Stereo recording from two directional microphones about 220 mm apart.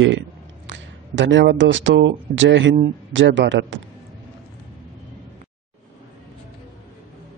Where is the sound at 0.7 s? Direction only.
55° right (ahead or behind).